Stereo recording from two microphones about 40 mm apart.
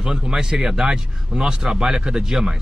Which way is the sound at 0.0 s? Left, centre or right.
Centre.